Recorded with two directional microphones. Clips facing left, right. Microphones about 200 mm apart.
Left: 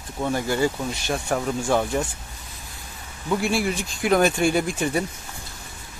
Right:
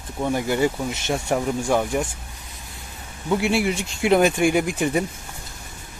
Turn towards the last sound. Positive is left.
turn(degrees=-15)  # may be behind; listen again after turning